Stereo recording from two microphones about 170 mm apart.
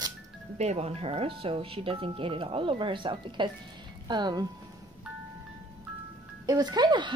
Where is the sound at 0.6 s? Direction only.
40° right (ahead or behind).